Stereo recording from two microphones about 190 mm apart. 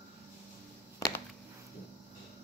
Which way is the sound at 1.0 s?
15° left (ahead or behind).